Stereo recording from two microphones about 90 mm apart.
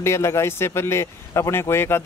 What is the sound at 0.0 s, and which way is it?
Speech, 30° left (ahead or behind).